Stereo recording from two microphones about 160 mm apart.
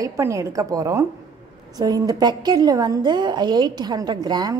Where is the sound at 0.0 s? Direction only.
20° right (ahead or behind).